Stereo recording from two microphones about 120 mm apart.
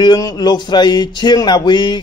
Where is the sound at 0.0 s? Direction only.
35° left (ahead or behind).